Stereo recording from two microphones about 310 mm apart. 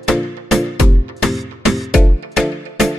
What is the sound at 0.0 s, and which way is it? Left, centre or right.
Music, centre.